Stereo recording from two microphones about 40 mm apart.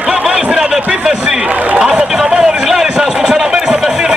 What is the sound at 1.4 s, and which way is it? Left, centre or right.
Chatter, right.